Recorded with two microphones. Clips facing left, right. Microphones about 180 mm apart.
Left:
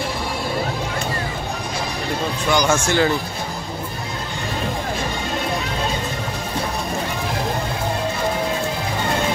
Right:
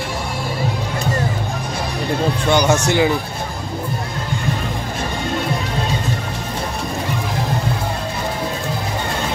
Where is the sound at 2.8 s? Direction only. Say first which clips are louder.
Right 2 dB; 15° right (ahead or behind).